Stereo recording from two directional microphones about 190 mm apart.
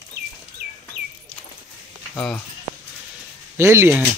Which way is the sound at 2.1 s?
5° left (ahead or behind).